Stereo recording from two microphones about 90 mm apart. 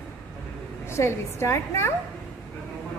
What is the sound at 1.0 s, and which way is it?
Speech, 30° left (ahead or behind).